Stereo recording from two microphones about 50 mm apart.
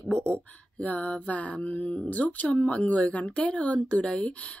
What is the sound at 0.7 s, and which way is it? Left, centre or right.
Mantra, left.